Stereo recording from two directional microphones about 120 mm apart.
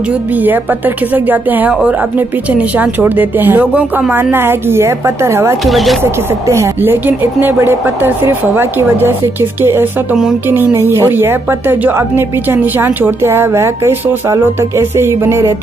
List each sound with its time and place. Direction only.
0.3 s speech: 15° right (ahead or behind)
5.7 s speech: centre (ahead or behind)
6.4 s speech: 25° right (ahead or behind)